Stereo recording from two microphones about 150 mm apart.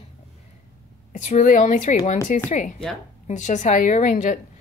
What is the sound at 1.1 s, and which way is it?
A woman's voice, 55° left (ahead or behind).